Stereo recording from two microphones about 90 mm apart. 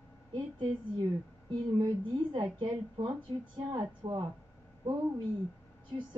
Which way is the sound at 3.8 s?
45° right (ahead or behind).